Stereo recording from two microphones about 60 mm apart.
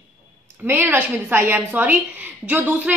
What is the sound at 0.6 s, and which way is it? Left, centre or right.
Speech, right.